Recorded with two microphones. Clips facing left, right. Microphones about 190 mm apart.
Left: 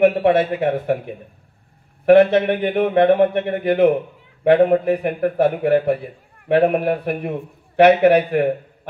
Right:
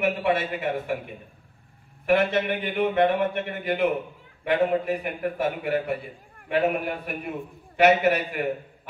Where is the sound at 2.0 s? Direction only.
65° left (ahead or behind).